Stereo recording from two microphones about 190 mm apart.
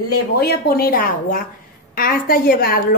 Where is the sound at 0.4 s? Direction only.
55° left (ahead or behind).